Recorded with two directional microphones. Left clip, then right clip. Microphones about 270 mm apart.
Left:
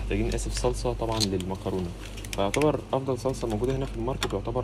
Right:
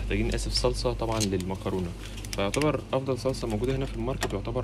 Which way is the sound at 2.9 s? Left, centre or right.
Centre.